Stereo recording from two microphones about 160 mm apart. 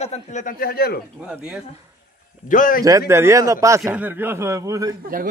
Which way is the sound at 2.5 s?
55° left (ahead or behind).